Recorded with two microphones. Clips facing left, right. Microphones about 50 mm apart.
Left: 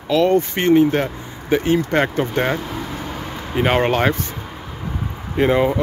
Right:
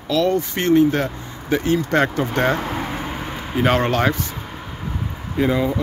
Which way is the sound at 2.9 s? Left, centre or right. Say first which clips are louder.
Right 1 dB; right.